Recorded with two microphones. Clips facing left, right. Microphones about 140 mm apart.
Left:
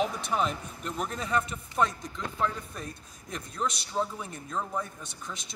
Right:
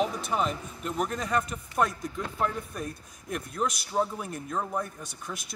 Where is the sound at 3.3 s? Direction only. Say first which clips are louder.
Right 3 dB; 10° right (ahead or behind).